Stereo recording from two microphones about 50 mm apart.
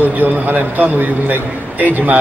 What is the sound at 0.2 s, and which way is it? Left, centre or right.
A man's voice, right.